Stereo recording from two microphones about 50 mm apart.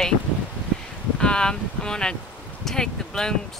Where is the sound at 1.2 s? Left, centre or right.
Centre.